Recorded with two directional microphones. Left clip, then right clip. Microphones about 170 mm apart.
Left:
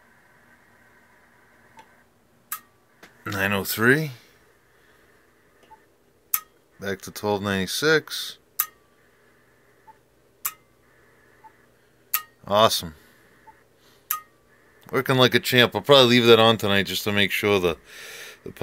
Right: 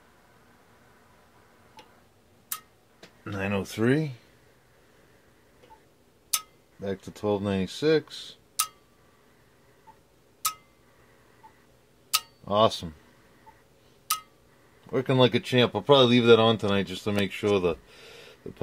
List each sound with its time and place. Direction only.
3.3 s speech: 15° left (ahead or behind)
6.8 s speech: 10° left (ahead or behind)
12.4 s speech: 10° left (ahead or behind)
14.9 s speech: 10° left (ahead or behind)